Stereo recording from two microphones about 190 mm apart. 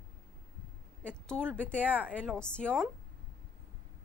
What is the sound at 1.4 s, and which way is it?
Speech, 10° right (ahead or behind).